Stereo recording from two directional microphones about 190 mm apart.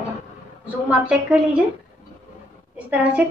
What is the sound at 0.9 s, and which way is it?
Speech, 5° right (ahead or behind).